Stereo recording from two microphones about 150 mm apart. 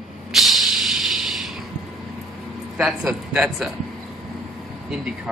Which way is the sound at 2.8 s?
Centre (ahead or behind).